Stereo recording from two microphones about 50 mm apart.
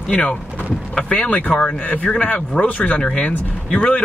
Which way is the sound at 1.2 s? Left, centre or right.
Left.